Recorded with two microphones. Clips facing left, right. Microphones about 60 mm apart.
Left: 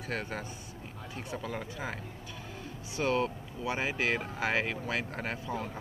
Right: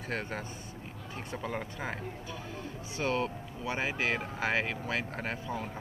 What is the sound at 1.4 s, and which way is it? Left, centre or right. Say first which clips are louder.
Speech: right 4 dB; centre.